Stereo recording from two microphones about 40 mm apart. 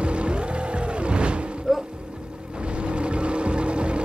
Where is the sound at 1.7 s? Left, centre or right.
Centre.